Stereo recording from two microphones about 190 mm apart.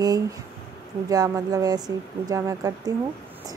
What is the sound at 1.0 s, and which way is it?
A woman's voice, 20° right (ahead or behind).